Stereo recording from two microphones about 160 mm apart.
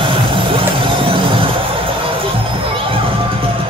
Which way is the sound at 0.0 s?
30° right (ahead or behind).